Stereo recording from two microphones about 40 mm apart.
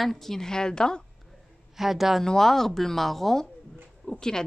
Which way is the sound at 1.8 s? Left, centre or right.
Centre.